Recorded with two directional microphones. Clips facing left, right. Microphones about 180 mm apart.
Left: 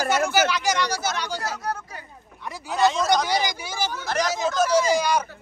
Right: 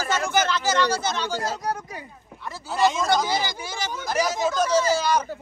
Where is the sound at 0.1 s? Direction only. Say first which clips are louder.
Even; 10° left (ahead or behind).